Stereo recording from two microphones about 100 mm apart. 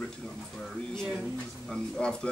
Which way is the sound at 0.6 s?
5° left (ahead or behind).